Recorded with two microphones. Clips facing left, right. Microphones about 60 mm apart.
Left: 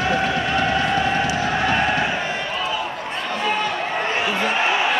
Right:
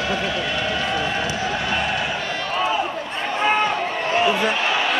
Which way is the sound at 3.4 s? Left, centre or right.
Right.